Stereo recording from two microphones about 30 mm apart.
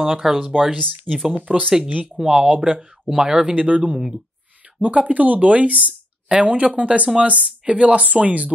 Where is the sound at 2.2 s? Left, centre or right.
Centre.